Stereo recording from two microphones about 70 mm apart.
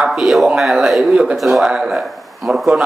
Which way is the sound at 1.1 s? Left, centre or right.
Centre.